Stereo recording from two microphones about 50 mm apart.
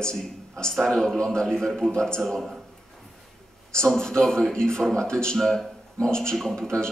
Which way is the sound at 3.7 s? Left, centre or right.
Centre.